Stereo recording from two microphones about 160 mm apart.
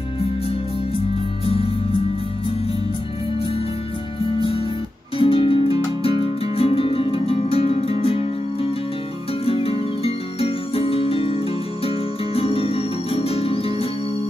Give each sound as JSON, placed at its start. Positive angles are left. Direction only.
{"t": 1.4, "sound": "music", "side_deg": 35}
{"t": 4.4, "sound": "music", "side_deg": 35}